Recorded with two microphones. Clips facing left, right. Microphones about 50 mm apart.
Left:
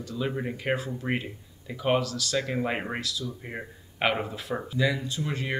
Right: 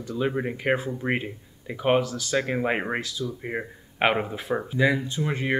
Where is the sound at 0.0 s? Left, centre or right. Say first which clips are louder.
Right 4 dB; right.